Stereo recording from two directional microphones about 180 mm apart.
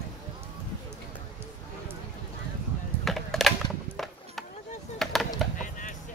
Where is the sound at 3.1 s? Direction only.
Centre (ahead or behind).